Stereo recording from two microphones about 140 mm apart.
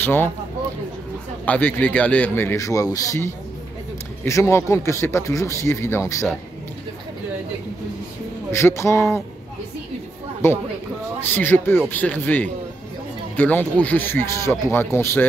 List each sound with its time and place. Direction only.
0.0 s speech: 15° left (ahead or behind)
1.4 s a man's voice: 10° left (ahead or behind)
8.5 s speech: 20° left (ahead or behind)
10.4 s a man's voice: 15° left (ahead or behind)